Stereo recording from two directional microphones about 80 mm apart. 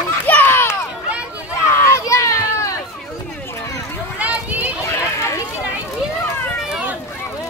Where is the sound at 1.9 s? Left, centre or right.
Left.